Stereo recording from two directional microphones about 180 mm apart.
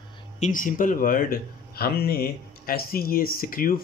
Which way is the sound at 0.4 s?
45° left (ahead or behind).